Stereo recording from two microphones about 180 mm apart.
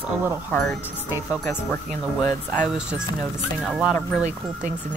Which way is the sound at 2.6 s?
5° right (ahead or behind).